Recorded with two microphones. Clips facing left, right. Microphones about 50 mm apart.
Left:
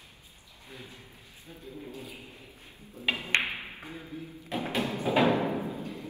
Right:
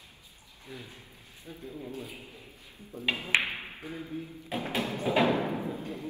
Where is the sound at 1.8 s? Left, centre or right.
Right.